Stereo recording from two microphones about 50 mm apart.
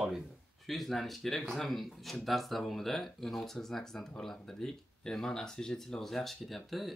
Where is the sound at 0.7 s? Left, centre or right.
Centre.